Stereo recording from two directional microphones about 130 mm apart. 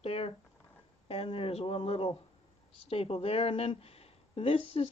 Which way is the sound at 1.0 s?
50° left (ahead or behind).